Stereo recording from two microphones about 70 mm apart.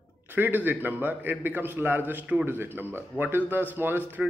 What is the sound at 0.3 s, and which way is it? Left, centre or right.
A man's voice, right.